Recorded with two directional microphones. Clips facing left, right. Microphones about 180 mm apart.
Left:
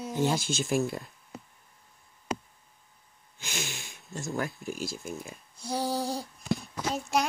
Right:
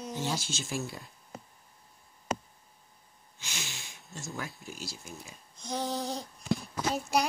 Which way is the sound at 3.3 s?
50° left (ahead or behind).